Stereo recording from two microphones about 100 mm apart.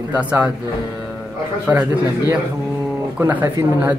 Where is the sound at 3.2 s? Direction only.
20° right (ahead or behind).